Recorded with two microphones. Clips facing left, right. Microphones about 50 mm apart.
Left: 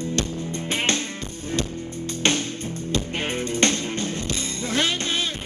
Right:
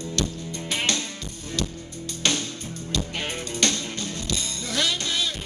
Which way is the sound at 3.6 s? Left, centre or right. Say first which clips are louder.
Left 2 dB; left.